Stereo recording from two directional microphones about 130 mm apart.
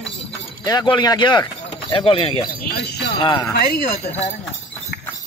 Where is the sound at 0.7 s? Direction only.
35° left (ahead or behind).